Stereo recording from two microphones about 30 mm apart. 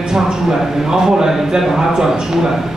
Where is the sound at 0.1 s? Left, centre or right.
Centre.